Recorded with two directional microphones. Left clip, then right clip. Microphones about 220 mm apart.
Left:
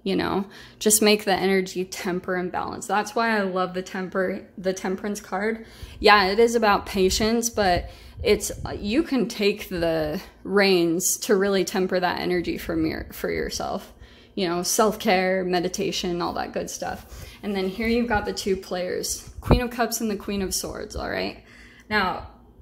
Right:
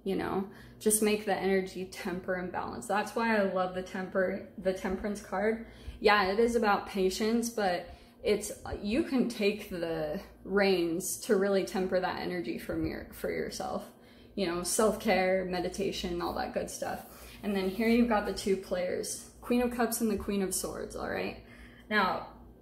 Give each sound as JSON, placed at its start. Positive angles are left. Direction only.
{"t": 0.0, "sound": "a woman's voice", "side_deg": 45}